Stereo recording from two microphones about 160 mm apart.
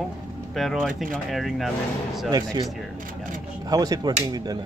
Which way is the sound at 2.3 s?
25° right (ahead or behind).